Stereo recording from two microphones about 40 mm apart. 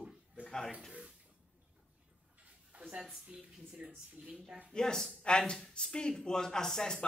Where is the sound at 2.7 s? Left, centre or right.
Right.